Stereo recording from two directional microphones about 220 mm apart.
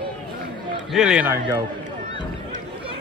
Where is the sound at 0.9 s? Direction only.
5° right (ahead or behind).